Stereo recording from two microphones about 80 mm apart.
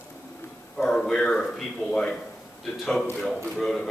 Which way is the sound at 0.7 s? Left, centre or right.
Centre.